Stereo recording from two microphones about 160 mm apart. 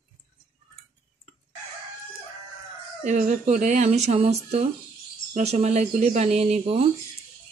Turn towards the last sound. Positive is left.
turn(degrees=-40)  # may be behind; listen again after turning